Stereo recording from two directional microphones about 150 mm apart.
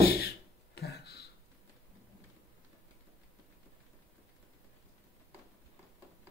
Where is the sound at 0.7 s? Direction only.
90° left.